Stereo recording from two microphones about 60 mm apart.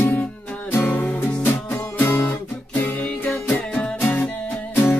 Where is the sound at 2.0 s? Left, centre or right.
Left.